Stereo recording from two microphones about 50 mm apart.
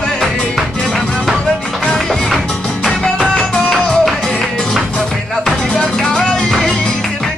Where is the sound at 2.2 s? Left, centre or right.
Centre.